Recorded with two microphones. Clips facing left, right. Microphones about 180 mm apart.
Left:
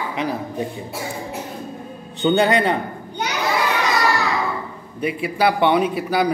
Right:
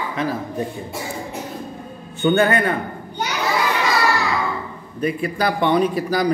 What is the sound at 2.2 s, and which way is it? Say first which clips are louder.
Speech: even; 20° left (ahead or behind).